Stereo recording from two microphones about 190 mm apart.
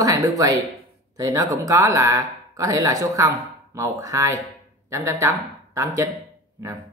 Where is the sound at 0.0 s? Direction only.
15° right (ahead or behind).